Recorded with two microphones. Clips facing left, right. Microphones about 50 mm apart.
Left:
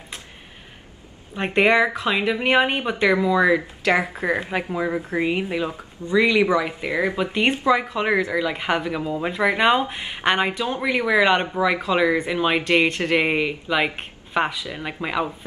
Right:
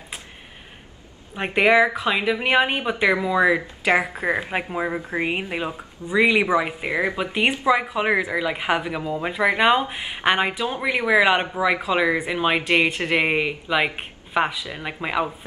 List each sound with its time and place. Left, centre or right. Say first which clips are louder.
1.3 s speech: even; centre